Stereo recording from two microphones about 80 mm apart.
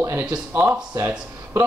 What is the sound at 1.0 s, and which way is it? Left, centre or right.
Speech, right.